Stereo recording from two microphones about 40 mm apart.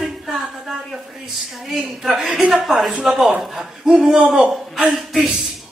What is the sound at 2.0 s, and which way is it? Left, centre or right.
A man's voice, centre.